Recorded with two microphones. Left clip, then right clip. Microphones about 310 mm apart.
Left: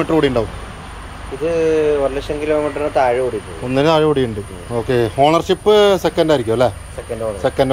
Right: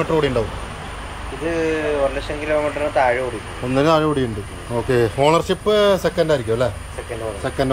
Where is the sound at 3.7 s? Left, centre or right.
Centre.